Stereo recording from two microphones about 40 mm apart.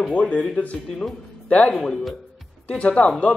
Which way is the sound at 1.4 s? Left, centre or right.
Left.